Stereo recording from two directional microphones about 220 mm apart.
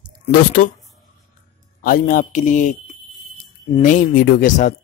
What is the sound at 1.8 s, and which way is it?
Speech, 40° left (ahead or behind).